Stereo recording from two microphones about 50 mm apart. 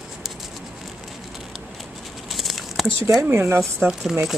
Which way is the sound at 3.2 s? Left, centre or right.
Right.